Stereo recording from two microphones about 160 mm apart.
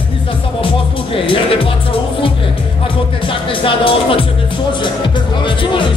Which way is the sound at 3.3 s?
35° left (ahead or behind).